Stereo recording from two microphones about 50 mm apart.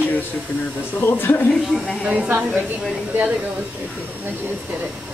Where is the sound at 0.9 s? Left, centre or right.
Left.